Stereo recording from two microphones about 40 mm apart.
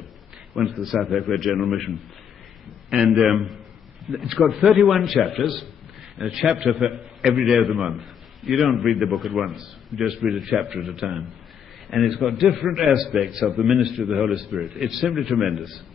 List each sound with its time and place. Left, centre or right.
0.6 s a man's voice: centre
2.9 s a man's voice: centre
3.4 s a sound: centre
4.1 s a man's voice: centre
6.3 s a man's voice: centre
10.7 s a man's voice: centre
11.9 s a man's voice: centre